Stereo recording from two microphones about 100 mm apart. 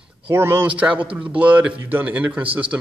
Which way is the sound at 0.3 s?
25° right (ahead or behind).